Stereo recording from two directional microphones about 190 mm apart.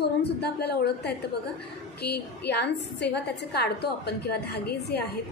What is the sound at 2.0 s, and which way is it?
A woman's voice, 60° left (ahead or behind).